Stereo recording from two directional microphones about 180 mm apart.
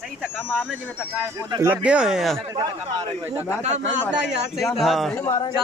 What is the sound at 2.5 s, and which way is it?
Speech, 15° right (ahead or behind).